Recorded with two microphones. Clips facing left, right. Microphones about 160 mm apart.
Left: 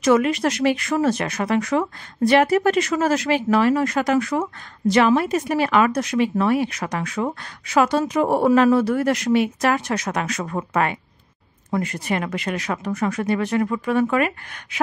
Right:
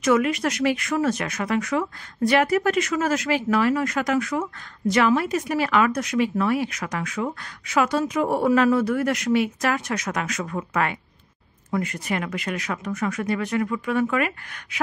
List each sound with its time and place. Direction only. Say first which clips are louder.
0.0 s speech: left 3 dB; 30° left (ahead or behind)